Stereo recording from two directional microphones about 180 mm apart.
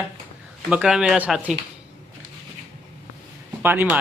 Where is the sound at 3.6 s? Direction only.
10° right (ahead or behind).